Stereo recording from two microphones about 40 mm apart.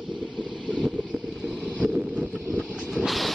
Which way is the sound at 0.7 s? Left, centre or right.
Centre.